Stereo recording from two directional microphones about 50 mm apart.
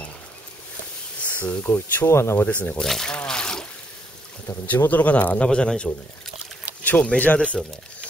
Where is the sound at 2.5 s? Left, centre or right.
Left.